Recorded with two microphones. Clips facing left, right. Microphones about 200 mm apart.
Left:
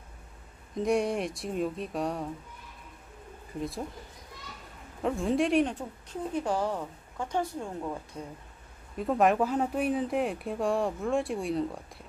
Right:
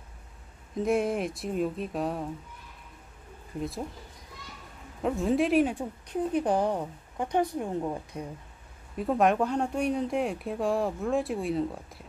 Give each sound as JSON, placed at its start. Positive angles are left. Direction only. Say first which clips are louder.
{"t": 0.7, "sound": "speech", "louder": "right 1 dB", "side_deg": 0}
{"t": 5.0, "sound": "speech", "louder": "right 1 dB", "side_deg": 0}
{"t": 5.8, "sound": "a woman's voice", "louder": "right 5 dB", "side_deg": -15}
{"t": 8.9, "sound": "speech", "louder": "even", "side_deg": 0}